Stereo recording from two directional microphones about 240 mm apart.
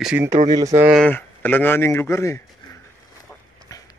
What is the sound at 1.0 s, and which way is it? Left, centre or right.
Speech, centre.